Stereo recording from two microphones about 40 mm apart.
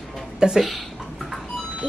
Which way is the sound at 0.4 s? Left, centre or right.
Centre.